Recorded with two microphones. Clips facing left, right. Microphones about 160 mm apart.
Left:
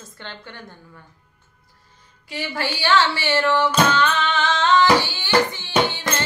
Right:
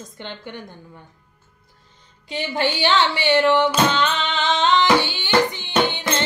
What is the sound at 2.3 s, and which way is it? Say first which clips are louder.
A woman's voice: right 4 dB; 20° right (ahead or behind).